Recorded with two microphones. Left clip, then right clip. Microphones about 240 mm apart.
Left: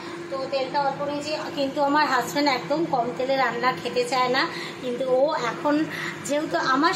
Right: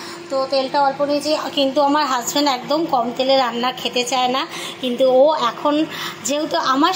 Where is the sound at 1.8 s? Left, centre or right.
Centre.